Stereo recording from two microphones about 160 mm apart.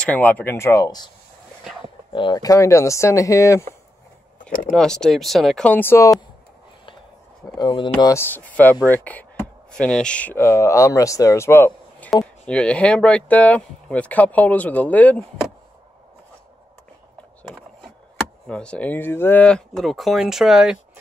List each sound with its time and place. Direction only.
0.0 s speech: 10° left (ahead or behind)
2.1 s speech: 25° left (ahead or behind)
4.7 s speech: 5° left (ahead or behind)
7.5 s speech: 30° left (ahead or behind)
8.1 s speech: 15° left (ahead or behind)
17.4 s skateboard: centre (ahead or behind)
18.5 s speech: 5° left (ahead or behind)